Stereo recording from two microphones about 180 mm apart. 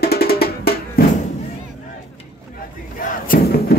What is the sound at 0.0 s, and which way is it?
Music, 60° left (ahead or behind).